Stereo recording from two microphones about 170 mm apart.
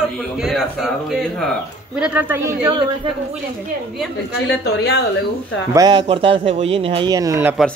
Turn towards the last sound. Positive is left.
turn(degrees=-15)  # may be behind; listen again after turning